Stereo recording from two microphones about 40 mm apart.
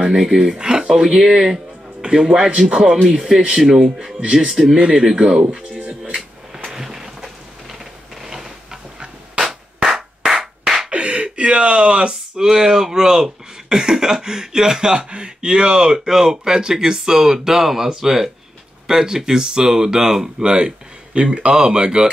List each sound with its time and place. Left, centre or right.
0.0 s speech: centre
2.0 s a man's voice: right
4.5 s speech: centre
4.7 s speech: right
5.8 s music: right
6.1 s a sound: centre
9.8 s music: centre
10.9 s a sound: right
12.4 s speech: centre